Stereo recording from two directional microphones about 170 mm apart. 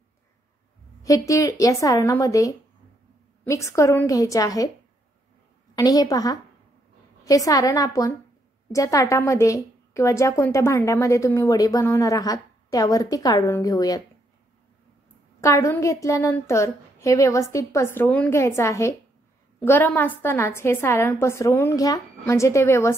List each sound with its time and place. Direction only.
1.0 s a woman's voice: 20° left (ahead or behind)
5.8 s a woman's voice: 20° left (ahead or behind)
15.4 s a woman's voice: 15° left (ahead or behind)